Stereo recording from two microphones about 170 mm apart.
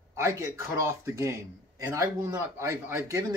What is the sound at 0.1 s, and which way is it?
Speech, 15° right (ahead or behind).